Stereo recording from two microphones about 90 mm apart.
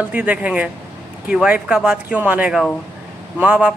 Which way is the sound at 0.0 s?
15° right (ahead or behind).